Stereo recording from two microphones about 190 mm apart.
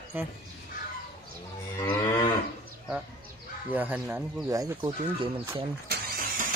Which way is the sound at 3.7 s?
10° right (ahead or behind).